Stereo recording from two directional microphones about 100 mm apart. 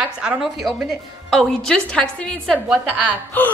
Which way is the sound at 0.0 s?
15° right (ahead or behind).